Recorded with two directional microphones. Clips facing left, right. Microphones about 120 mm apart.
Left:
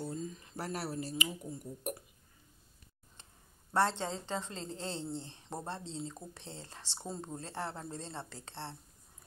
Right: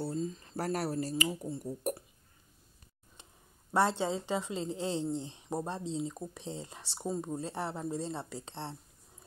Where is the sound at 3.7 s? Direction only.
10° right (ahead or behind).